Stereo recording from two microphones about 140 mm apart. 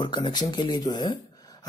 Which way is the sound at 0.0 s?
35° left (ahead or behind).